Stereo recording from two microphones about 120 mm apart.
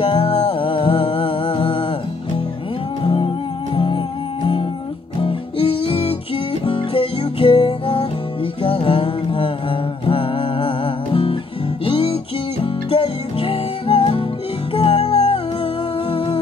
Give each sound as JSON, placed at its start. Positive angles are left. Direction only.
{"t": 0.0, "sound": "music", "side_deg": 40}
{"t": 3.0, "sound": "music", "side_deg": 45}
{"t": 5.2, "sound": "music", "side_deg": 50}
{"t": 11.8, "sound": "music", "side_deg": 45}